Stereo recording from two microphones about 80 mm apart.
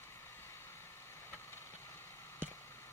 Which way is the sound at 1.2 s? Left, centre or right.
Left.